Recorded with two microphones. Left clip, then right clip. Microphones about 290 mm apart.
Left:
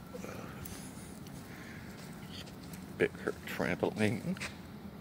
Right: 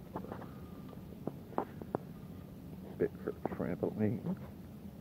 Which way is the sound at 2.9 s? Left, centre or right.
Left.